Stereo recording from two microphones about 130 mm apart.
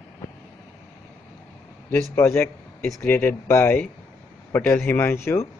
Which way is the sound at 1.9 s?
15° left (ahead or behind).